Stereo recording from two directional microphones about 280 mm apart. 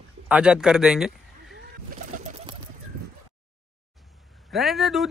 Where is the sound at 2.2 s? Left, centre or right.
Right.